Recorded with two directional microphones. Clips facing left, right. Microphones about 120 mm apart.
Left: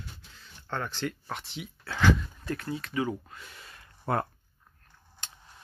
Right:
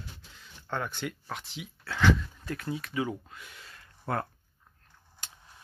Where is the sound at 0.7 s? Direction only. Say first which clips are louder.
Left 1 dB; 10° right (ahead or behind).